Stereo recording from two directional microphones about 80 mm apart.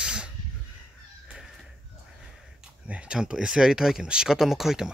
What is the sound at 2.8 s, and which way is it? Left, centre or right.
Speech, centre.